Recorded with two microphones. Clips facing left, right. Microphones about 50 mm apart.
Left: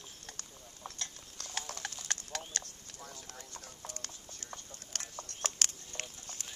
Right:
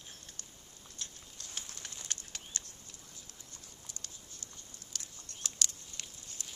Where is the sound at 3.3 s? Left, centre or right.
Left.